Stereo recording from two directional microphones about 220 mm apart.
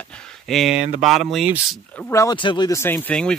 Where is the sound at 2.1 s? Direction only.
15° left (ahead or behind).